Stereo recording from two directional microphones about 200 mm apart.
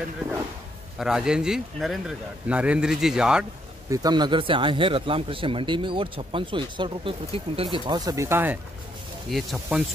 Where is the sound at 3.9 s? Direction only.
20° right (ahead or behind).